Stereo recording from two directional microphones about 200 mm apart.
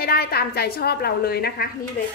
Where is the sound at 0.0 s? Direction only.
50° left (ahead or behind).